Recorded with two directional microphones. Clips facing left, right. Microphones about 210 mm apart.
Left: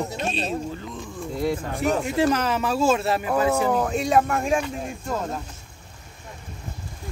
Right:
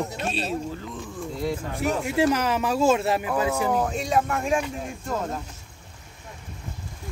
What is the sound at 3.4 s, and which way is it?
Speech, 55° left (ahead or behind).